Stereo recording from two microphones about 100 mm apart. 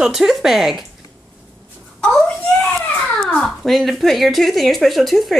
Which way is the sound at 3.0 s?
5° left (ahead or behind).